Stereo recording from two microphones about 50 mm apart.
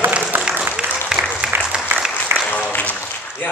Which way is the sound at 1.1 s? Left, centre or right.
Centre.